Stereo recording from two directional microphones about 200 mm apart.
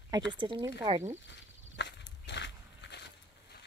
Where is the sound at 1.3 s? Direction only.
60° left (ahead or behind).